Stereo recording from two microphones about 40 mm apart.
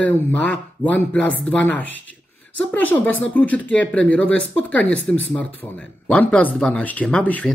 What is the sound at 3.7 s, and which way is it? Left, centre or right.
Speech, left.